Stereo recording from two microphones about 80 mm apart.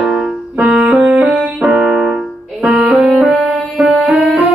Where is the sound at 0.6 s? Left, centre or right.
Centre.